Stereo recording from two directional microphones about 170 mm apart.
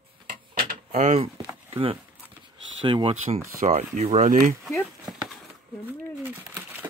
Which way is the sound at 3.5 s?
40° right (ahead or behind).